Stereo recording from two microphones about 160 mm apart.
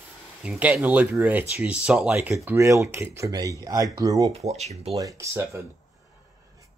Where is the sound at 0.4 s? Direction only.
10° right (ahead or behind).